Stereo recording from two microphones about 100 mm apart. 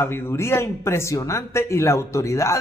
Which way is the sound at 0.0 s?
25° left (ahead or behind).